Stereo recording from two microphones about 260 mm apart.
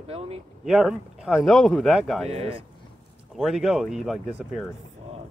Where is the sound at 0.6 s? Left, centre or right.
Centre.